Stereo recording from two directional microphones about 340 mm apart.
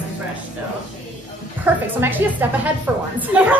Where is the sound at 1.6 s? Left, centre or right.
Centre.